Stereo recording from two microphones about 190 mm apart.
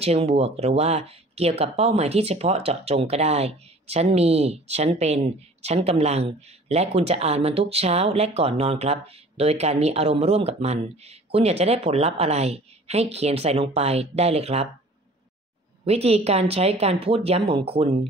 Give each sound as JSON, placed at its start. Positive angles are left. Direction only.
{"t": 0.0, "sound": "speech", "side_deg": -30}
{"t": 15.8, "sound": "speech", "side_deg": -35}